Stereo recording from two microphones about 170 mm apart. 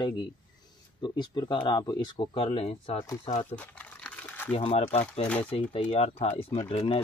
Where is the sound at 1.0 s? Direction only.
25° left (ahead or behind).